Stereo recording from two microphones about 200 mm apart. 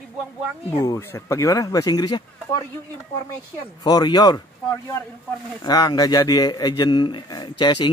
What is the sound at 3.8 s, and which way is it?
Speech, 20° left (ahead or behind).